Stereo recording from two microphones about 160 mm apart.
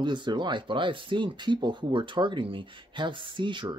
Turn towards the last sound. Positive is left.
turn(degrees=-30)  # may be behind; listen again after turning